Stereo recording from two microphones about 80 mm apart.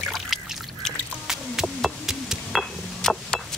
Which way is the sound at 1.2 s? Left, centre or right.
Centre.